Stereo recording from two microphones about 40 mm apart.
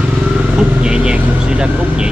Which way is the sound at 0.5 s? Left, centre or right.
Right.